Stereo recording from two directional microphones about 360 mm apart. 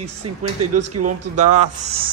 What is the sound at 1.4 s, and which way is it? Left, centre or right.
Speech, centre.